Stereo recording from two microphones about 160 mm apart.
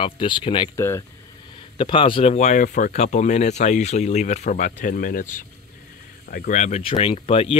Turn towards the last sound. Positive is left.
turn(degrees=35)  # may be behind; listen again after turning